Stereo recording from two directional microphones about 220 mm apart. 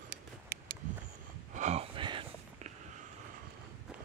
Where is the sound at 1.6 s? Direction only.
30° right (ahead or behind).